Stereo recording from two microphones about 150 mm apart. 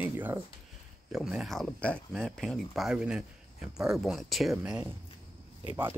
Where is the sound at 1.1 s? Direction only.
Centre (ahead or behind).